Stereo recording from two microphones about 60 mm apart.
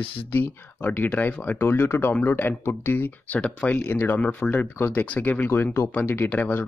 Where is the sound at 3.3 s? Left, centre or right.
Left.